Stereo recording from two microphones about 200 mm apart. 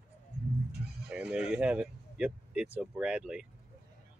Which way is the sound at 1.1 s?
5° right (ahead or behind).